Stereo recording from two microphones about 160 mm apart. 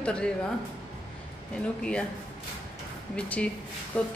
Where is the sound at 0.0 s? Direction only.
5° left (ahead or behind).